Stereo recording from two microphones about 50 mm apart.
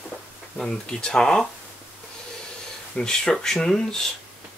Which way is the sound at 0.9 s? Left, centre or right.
Centre.